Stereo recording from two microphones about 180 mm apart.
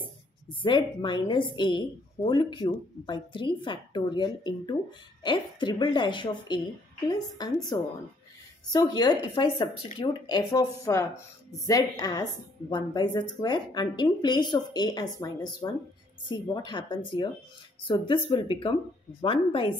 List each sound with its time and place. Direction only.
0.6 s a woman's voice: 25° left (ahead or behind)